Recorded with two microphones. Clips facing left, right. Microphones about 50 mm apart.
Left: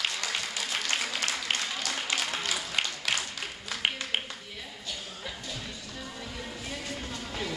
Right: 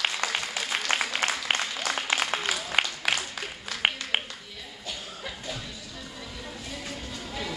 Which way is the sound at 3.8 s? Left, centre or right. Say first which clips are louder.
Right 4 dB; right.